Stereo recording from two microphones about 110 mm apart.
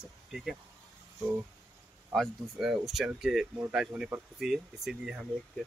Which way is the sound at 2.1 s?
Centre (ahead or behind).